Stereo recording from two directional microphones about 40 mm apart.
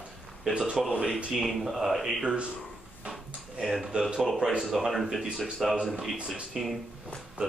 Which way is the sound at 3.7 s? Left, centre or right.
Centre.